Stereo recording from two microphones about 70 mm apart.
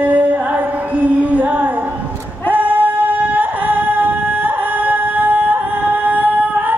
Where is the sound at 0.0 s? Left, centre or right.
Right.